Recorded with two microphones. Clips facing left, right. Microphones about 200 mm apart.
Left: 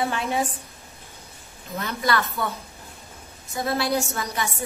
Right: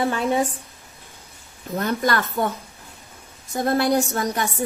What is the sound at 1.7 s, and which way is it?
Speech, 50° right (ahead or behind).